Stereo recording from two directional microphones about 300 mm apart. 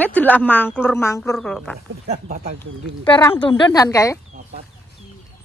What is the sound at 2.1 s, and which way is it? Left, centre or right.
Speech, right.